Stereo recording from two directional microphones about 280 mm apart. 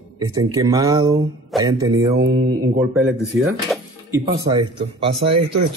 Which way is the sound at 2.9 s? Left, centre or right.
Centre.